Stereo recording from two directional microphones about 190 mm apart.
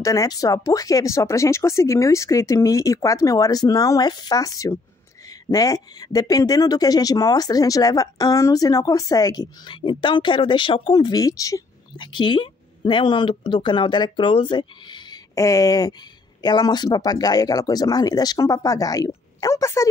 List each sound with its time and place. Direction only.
0.0 s speech: 15° left (ahead or behind)